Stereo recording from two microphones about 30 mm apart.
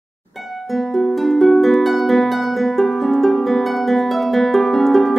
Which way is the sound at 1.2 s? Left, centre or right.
Centre.